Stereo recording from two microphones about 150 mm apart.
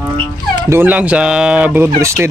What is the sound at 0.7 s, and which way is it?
Speech, 10° right (ahead or behind).